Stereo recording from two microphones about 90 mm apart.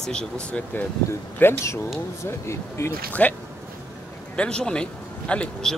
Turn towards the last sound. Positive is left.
turn(degrees=10)  # may be behind; listen again after turning